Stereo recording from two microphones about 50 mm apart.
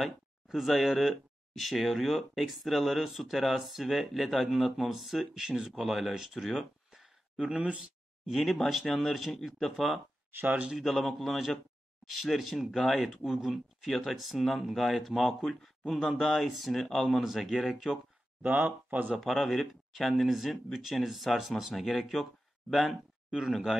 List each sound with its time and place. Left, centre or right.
0.0 s speech: centre
6.3 s a sound: centre
7.3 s speech: centre
8.3 s speech: centre
10.3 s speech: right
10.8 s speech: centre
17.2 s speech: centre
18.4 s speech: right
19.1 s speech: centre